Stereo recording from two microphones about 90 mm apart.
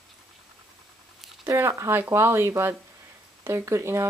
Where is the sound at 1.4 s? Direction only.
30° right (ahead or behind).